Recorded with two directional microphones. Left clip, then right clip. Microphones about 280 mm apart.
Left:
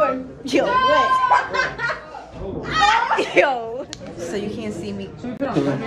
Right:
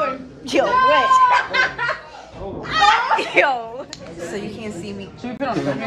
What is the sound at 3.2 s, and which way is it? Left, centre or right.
Speech, centre.